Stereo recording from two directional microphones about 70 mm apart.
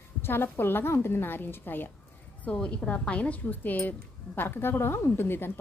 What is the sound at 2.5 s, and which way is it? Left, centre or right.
A woman's voice, centre.